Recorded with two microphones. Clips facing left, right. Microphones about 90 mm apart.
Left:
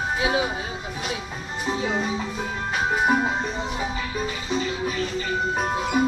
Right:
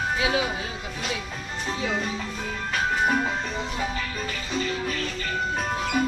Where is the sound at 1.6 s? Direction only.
15° left (ahead or behind).